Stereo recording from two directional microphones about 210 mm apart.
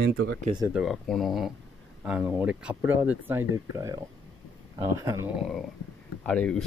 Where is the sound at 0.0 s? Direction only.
55° right (ahead or behind).